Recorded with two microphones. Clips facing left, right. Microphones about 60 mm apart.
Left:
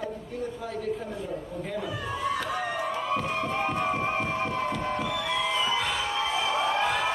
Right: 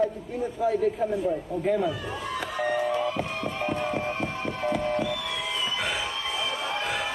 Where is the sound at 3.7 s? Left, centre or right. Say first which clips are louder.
Even; centre.